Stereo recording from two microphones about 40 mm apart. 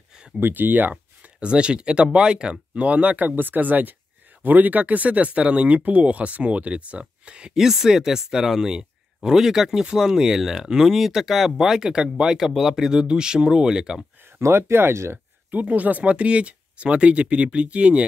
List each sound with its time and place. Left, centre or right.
0.4 s speech: right
1.4 s speech: right
2.7 s speech: right
7.5 s speech: centre
12.4 s speech: centre
12.8 s speech: centre
14.5 s speech: right
15.5 s speech: right